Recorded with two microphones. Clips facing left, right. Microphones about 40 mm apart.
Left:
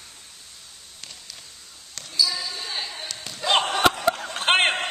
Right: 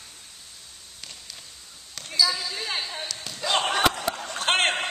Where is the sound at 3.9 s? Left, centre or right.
Left.